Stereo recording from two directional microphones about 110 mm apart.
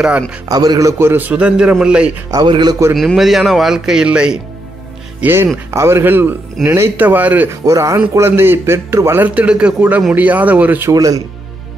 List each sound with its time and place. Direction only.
0.5 s a man's voice: 35° right (ahead or behind); by 2.1 s 10° right (ahead or behind)
2.4 s a man's voice: 45° right (ahead or behind)
3.0 s speech: centre (ahead or behind)
5.2 s a man's voice: 20° right (ahead or behind)
7.6 s a man's voice: 30° right (ahead or behind)
10.9 s speech: 30° right (ahead or behind)